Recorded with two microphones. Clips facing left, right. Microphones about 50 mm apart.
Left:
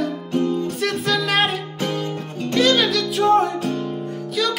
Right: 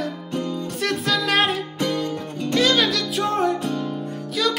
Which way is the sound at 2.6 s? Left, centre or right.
Centre.